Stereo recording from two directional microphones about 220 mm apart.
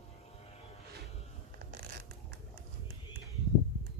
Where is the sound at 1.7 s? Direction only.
40° right (ahead or behind).